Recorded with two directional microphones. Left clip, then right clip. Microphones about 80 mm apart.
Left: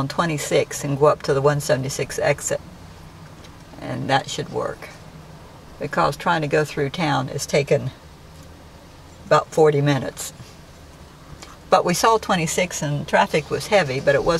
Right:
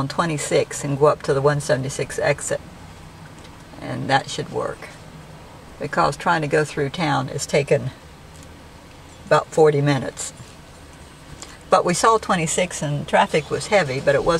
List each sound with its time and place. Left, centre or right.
0.0 s speech: centre
3.8 s speech: centre
9.3 s speech: centre
11.7 s speech: centre